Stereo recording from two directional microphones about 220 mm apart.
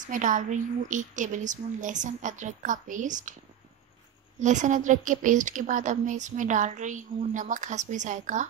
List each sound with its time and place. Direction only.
0.0 s a woman's voice: 35° right (ahead or behind)
4.4 s a woman's voice: 35° right (ahead or behind)